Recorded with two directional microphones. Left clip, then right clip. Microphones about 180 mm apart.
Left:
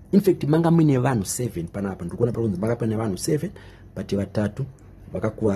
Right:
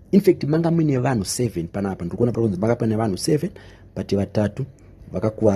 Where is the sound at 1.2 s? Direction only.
25° right (ahead or behind).